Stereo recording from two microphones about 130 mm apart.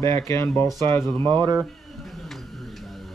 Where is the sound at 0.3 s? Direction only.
20° left (ahead or behind).